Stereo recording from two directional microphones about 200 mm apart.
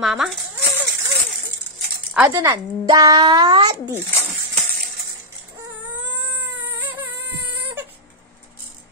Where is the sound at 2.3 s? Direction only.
20° right (ahead or behind).